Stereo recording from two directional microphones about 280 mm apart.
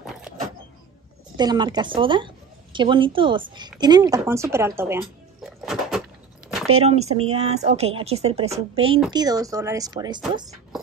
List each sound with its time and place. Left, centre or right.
1.3 s a woman's voice: centre
6.7 s a woman's voice: right